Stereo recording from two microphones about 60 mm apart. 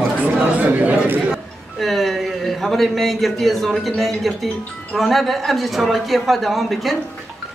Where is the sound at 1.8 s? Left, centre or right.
Centre.